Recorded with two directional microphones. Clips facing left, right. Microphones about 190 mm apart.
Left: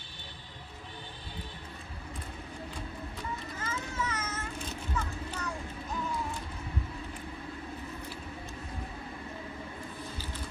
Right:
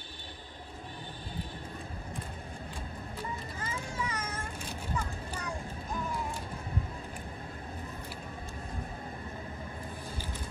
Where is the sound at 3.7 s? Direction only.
15° right (ahead or behind).